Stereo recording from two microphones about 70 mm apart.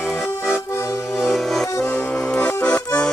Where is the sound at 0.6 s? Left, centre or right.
Left.